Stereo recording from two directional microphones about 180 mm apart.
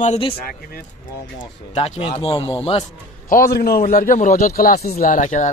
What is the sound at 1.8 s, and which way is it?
A man's voice, 35° left (ahead or behind).